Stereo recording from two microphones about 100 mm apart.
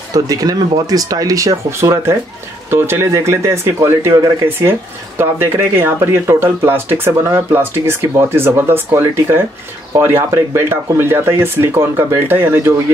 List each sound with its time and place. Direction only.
0.1 s speech: 35° right (ahead or behind); by 12.7 s 20° right (ahead or behind)